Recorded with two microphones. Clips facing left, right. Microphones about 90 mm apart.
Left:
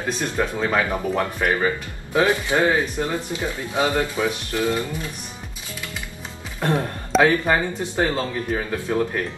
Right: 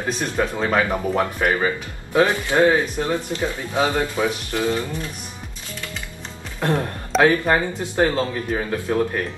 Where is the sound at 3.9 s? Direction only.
10° right (ahead or behind).